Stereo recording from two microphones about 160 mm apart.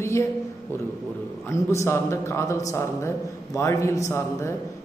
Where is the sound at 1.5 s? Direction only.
15° left (ahead or behind).